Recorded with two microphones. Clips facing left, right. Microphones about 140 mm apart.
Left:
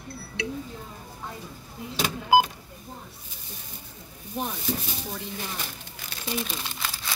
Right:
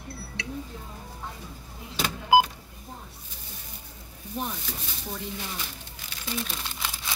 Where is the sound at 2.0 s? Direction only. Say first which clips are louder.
Even; 10° left (ahead or behind).